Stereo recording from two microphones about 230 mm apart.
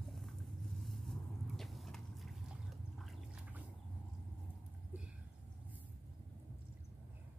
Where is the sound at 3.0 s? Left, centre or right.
Centre.